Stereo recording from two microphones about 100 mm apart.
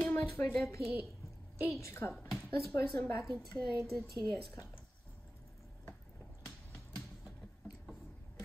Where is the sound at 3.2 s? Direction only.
Centre (ahead or behind).